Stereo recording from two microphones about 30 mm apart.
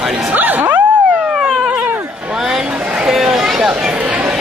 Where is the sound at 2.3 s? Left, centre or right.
Centre.